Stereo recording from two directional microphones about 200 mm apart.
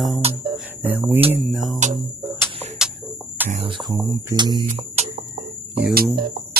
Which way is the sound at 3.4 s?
30° right (ahead or behind).